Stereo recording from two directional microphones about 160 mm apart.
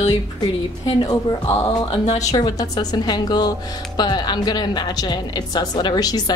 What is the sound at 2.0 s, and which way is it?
Speech, 45° left (ahead or behind).